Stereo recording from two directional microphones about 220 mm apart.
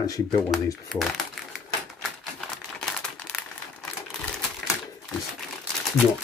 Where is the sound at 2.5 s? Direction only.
Centre (ahead or behind).